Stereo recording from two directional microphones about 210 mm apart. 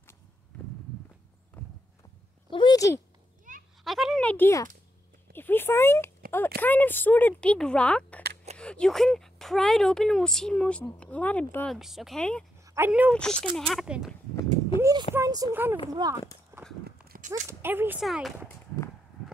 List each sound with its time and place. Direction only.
1.6 s clip-clop: 10° left (ahead or behind)
2.5 s speech: 20° left (ahead or behind)
3.5 s a sound: 35° right (ahead or behind)
3.8 s speech: centre (ahead or behind)
12.6 s speech: 10° right (ahead or behind)
13.1 s speech: 5° left (ahead or behind)
14.8 s a sound: 15° right (ahead or behind)
15.1 s speech: 15° right (ahead or behind)
17.1 s a sound: 40° right (ahead or behind)
17.5 s speech: 10° right (ahead or behind)